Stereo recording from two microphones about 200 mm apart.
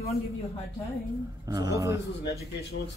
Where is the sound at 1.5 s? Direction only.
15° right (ahead or behind).